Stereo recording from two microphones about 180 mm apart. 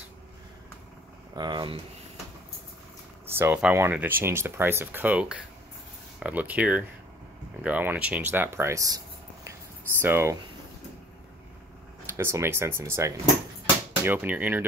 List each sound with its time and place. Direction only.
1.3 s speech: 25° right (ahead or behind)
3.3 s speech: 10° right (ahead or behind)
12.2 s speech: 15° right (ahead or behind)